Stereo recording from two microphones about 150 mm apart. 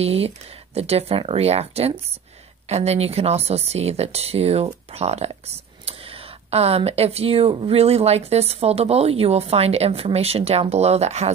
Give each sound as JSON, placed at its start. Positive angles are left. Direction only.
{"t": 0.0, "sound": "speech", "side_deg": -40}